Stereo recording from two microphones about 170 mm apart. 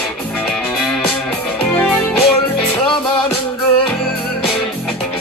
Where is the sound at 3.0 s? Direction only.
30° left (ahead or behind).